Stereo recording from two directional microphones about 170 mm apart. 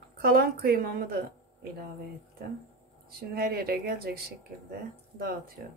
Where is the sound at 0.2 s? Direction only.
60° right (ahead or behind).